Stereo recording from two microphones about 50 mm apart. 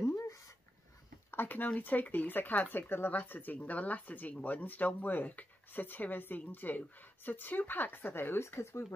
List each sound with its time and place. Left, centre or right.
1.3 s speech: left